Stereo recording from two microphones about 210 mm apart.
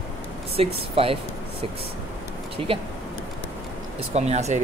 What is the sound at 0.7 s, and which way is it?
Speech, 25° right (ahead or behind).